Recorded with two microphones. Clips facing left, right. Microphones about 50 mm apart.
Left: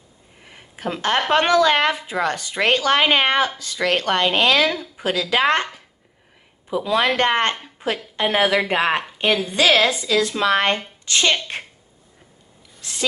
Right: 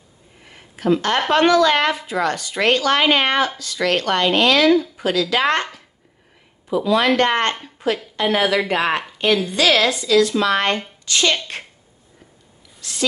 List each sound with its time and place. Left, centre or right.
0.5 s a sound: centre
1.3 s speech: centre
12.8 s rub: left